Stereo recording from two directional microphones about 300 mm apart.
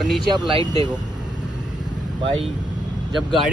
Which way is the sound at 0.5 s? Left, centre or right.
Centre.